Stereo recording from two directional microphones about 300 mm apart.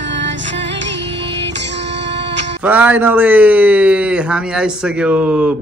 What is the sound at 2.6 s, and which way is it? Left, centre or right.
A man's voice, centre.